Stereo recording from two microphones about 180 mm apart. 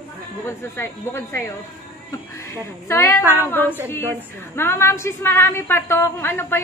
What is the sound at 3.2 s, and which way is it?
Speech, 10° right (ahead or behind).